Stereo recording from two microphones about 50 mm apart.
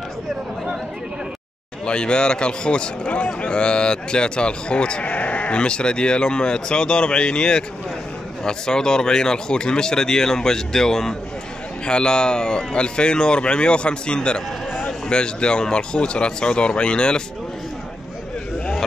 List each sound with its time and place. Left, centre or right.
1.9 s speech: centre